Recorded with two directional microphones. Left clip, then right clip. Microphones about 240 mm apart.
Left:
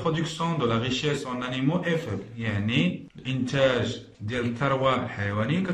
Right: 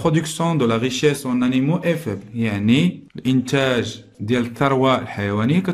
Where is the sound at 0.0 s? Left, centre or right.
Right.